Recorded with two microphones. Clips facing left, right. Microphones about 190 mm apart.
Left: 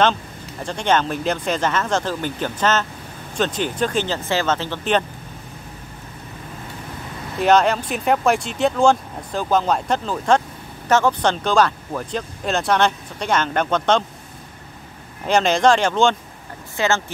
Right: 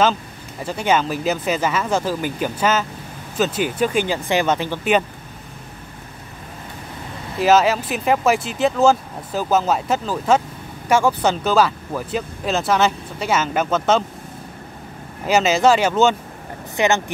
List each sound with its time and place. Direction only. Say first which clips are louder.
0.0 s speech: even; 5° right (ahead or behind)
7.3 s speech: right 1 dB; 5° right (ahead or behind)
15.2 s speech: right 1 dB; 5° right (ahead or behind)
16.7 s speech: right 2 dB; 15° right (ahead or behind)